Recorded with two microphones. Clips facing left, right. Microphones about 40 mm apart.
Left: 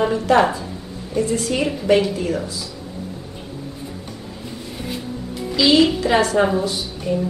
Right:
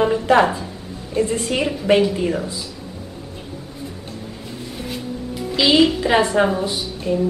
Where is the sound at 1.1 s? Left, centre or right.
Right.